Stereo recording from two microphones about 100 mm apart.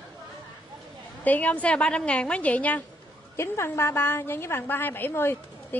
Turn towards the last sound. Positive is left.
turn(degrees=20)  # may be behind; listen again after turning